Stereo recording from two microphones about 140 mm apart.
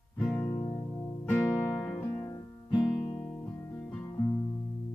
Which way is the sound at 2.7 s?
35° left (ahead or behind).